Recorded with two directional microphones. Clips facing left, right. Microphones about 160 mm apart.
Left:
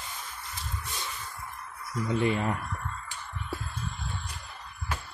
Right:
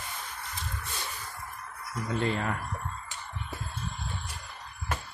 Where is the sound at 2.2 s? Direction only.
15° left (ahead or behind).